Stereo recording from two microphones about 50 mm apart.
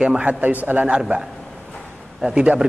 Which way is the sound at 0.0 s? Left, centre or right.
Right.